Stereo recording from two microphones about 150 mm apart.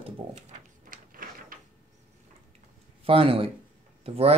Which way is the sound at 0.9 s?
70° right (ahead or behind).